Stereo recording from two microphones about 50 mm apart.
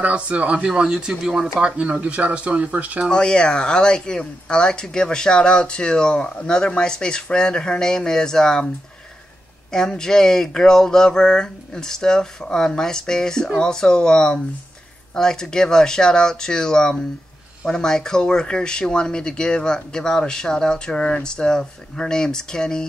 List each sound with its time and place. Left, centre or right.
0.0 s speech: right
3.1 s speech: centre
9.7 s speech: centre